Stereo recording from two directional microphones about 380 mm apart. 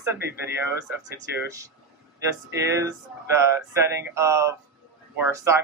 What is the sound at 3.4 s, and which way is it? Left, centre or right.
Speech, centre.